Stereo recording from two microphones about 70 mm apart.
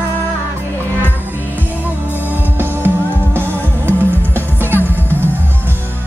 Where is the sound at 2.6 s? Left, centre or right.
Right.